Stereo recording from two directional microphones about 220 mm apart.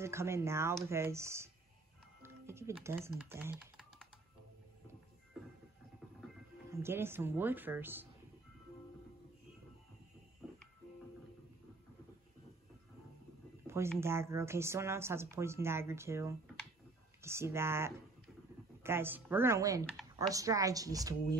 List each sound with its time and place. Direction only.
0.0 s speech: 10° right (ahead or behind)
6.8 s speech: 10° right (ahead or behind)
13.7 s speech: 10° right (ahead or behind)